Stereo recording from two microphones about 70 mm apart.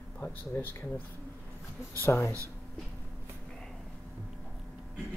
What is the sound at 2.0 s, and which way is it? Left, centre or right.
Speech, left.